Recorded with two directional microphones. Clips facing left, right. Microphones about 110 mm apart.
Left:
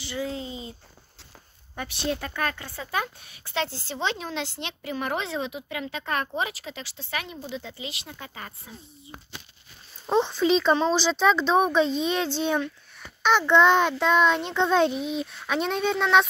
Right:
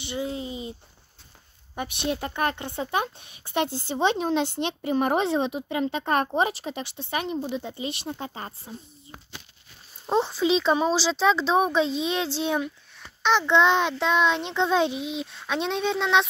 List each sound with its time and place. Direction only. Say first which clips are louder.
0.0 s a sound: right 1 dB; 20° right (ahead or behind)
1.8 s a woman's voice: right 1 dB; 20° right (ahead or behind)
8.1 s speech: right 6 dB; 30° right (ahead or behind)
10.0 s a child's voice: left 1 dB; 5° right (ahead or behind)